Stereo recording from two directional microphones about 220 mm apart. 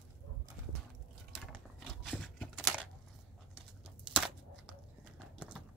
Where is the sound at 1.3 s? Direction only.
Centre (ahead or behind).